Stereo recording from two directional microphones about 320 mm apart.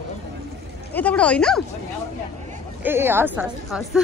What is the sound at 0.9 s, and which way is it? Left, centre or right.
Speech, centre.